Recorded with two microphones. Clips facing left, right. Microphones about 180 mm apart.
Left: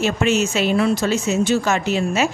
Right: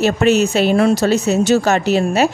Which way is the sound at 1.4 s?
75° right (ahead or behind).